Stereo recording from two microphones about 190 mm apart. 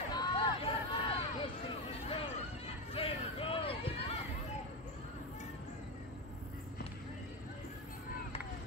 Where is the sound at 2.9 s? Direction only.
30° left (ahead or behind).